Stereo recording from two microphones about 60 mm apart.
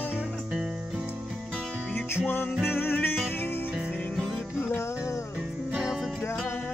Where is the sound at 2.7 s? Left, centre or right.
Left.